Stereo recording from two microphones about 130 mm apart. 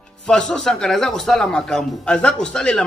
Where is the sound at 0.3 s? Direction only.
5° left (ahead or behind).